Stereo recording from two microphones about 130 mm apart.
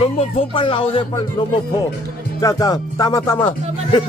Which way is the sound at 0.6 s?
45° left (ahead or behind).